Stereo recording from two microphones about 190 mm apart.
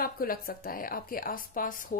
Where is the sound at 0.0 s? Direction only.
50° left (ahead or behind).